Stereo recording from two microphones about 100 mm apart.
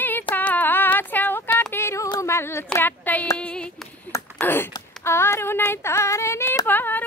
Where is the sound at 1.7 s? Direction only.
25° left (ahead or behind).